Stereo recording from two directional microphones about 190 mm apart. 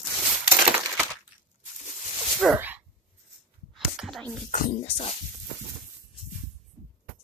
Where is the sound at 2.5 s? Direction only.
10° right (ahead or behind).